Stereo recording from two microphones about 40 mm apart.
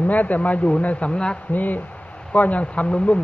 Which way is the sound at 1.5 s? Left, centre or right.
Left.